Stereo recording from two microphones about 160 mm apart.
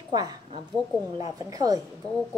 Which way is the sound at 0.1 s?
25° right (ahead or behind).